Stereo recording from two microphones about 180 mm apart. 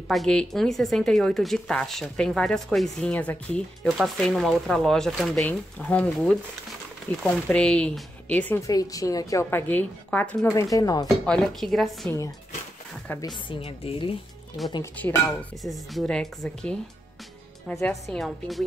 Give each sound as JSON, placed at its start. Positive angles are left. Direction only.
{"t": 0.1, "sound": "a woman's voice", "side_deg": 5}
{"t": 11.2, "sound": "speech", "side_deg": 5}
{"t": 12.1, "sound": "a woman's voice", "side_deg": 20}
{"t": 13.5, "sound": "a woman's voice", "side_deg": 35}
{"t": 15.0, "sound": "a woman's voice", "side_deg": 10}